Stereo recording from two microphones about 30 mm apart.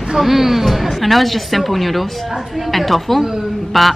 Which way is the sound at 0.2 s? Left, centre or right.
Centre.